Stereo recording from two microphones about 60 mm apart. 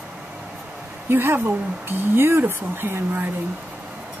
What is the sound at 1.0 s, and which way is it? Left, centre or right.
Speech, right.